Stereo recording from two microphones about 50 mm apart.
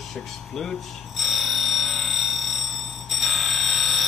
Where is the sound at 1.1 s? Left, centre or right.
Centre.